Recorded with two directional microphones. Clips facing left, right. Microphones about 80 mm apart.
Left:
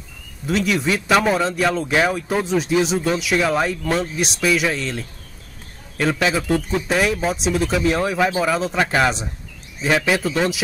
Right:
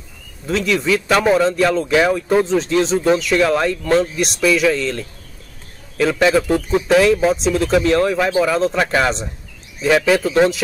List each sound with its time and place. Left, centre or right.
0.5 s speech: centre
6.9 s speech: right
7.2 s speech: centre